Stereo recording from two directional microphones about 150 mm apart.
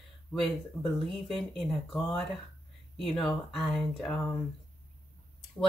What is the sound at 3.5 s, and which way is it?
Speech, centre (ahead or behind).